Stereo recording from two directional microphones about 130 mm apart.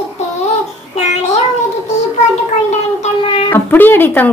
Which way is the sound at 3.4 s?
15° left (ahead or behind).